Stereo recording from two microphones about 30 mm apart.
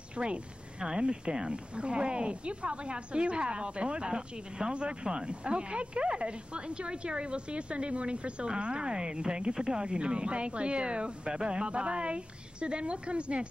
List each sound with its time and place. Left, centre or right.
0.2 s speech: right